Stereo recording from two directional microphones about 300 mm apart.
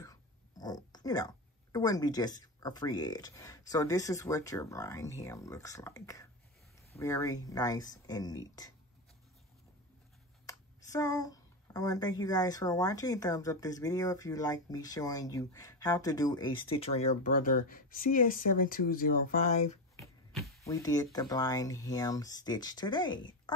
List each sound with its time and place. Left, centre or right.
0.0 s speech: centre
10.4 s speech: centre
20.0 s speech: centre